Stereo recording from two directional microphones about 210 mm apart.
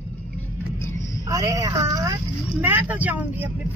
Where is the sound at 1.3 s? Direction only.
15° right (ahead or behind).